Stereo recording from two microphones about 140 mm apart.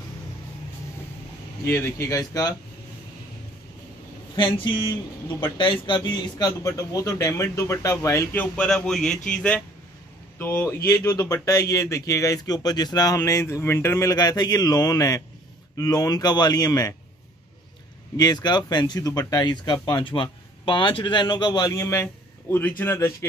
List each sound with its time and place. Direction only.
1.6 s speech: 20° left (ahead or behind)
4.4 s speech: 35° left (ahead or behind)
18.1 s speech: 30° left (ahead or behind)